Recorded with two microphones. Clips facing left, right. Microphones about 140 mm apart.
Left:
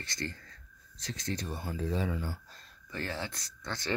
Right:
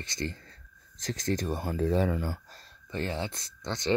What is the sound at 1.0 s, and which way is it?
Speech, 45° right (ahead or behind).